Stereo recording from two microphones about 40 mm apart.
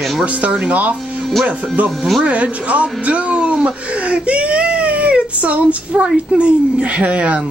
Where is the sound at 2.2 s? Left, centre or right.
Right.